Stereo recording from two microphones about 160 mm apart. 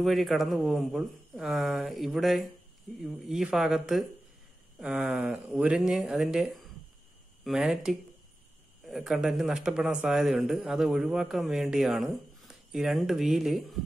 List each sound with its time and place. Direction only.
0.0 s a man's voice: centre (ahead or behind)